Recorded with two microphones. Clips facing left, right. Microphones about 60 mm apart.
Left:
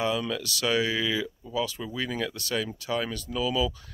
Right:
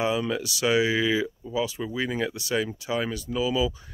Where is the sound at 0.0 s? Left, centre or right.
Centre.